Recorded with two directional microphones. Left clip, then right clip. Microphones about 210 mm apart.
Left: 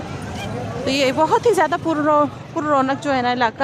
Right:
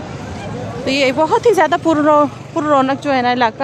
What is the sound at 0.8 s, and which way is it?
Speech, 5° right (ahead or behind).